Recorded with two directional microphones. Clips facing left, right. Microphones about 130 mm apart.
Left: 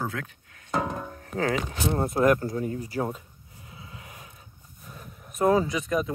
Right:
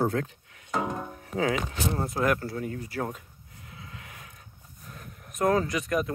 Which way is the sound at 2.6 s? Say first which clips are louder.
Left 3 dB; 35° left (ahead or behind).